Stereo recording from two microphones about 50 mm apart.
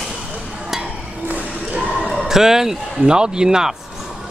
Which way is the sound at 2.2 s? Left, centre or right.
Centre.